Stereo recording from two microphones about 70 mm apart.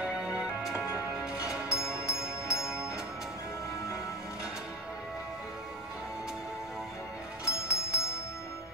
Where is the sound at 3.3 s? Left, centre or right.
Left.